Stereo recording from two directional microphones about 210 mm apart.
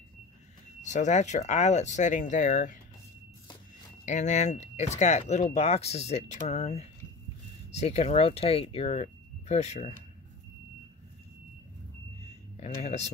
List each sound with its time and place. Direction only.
0.8 s speech: 35° left (ahead or behind)
4.0 s speech: 35° left (ahead or behind)
12.8 s speech: 30° left (ahead or behind)